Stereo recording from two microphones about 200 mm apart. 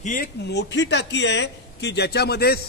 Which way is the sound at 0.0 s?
40° left (ahead or behind).